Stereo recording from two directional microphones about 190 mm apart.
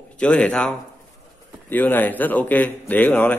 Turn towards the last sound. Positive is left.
turn(degrees=10)  # may be behind; listen again after turning